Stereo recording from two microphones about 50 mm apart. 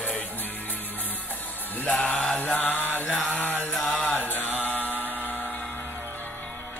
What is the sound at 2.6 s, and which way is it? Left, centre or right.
Music, left.